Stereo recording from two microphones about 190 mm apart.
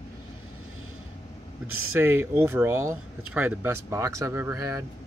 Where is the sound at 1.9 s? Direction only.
10° right (ahead or behind).